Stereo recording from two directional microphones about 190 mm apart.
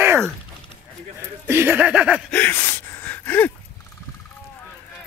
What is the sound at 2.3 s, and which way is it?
Gasp, 10° left (ahead or behind).